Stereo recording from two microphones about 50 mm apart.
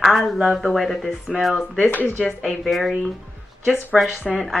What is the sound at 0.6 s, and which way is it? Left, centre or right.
Speech, centre.